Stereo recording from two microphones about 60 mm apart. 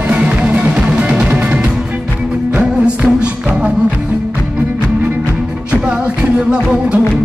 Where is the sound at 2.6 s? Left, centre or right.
Centre.